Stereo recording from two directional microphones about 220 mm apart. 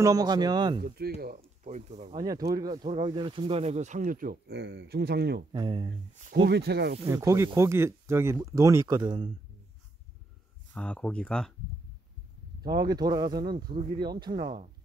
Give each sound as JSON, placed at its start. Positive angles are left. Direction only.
{"t": 0.0, "sound": "speech", "side_deg": -15}
{"t": 0.8, "sound": "speech", "side_deg": -45}
{"t": 2.1, "sound": "speech", "side_deg": -15}
{"t": 5.5, "sound": "speech", "side_deg": -20}
{"t": 6.1, "sound": "speech", "side_deg": -35}
{"t": 6.4, "sound": "speech", "side_deg": -45}
{"t": 7.1, "sound": "speech", "side_deg": -15}
{"t": 10.7, "sound": "speech", "side_deg": 5}
{"t": 12.6, "sound": "speech", "side_deg": -20}